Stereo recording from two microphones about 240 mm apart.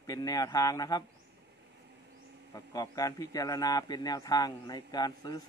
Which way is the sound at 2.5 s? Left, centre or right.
Centre.